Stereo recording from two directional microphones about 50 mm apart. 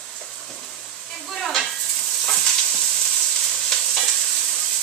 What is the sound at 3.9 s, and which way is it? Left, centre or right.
Stir, centre.